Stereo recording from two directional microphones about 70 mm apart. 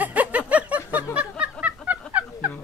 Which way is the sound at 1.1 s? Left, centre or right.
Centre.